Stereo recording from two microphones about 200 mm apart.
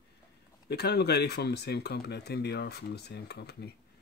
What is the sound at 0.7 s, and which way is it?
Speech, 50° left (ahead or behind).